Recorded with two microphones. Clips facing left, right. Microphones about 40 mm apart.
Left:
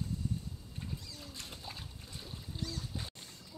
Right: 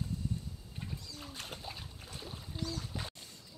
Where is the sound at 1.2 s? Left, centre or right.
Right.